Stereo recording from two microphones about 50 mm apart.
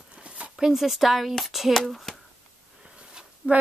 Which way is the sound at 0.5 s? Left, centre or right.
Centre.